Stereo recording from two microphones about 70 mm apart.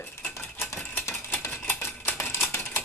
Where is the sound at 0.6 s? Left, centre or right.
Left.